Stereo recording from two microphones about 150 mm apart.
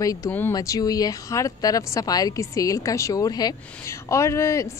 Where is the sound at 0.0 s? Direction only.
25° left (ahead or behind).